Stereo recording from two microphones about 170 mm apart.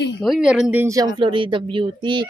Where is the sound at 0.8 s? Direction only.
20° right (ahead or behind).